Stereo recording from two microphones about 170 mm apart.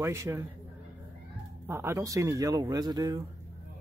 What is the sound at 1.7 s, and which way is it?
Speech, 15° right (ahead or behind).